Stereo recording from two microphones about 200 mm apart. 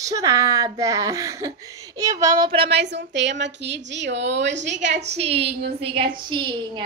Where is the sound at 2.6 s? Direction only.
60° right (ahead or behind).